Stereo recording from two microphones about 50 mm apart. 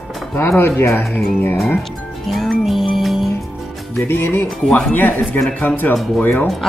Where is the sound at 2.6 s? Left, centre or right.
Centre.